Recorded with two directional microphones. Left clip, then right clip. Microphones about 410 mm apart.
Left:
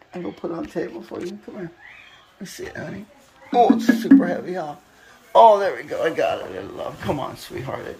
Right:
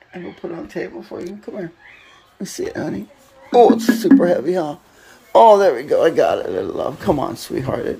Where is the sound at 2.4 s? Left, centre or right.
Centre.